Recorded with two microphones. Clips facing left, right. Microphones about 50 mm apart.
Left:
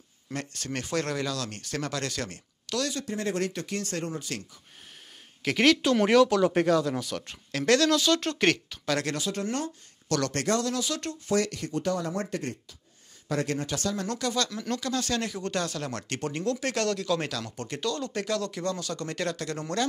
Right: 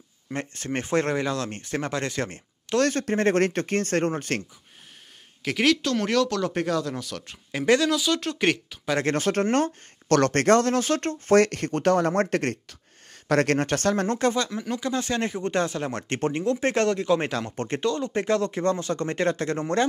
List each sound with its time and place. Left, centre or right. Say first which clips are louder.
0.3 s speech: right 4 dB; right
2.8 s speech: right 9 dB; right
5.4 s speech: even; centre
5.8 s speech: left 3 dB; centre
7.5 s speech: right 2 dB; centre
7.9 s speech: even; centre
9.1 s speech: right 8 dB; right
14.0 s speech: right 6 dB; right
14.4 s speech: right 2 dB; centre